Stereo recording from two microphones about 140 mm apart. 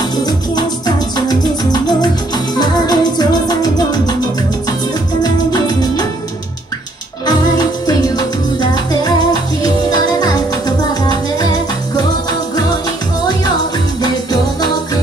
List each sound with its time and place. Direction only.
0.1 s music: 30° left (ahead or behind)
5.2 s music: 30° left (ahead or behind)
7.2 s music: 30° left (ahead or behind)